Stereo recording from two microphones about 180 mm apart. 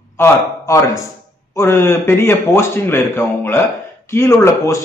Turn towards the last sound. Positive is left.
turn(degrees=15)  # may be behind; listen again after turning